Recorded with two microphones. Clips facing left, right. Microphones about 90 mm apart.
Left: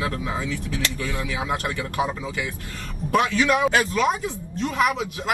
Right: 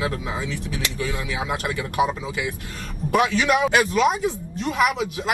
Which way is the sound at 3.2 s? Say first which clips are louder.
Right 1 dB; 20° right (ahead or behind).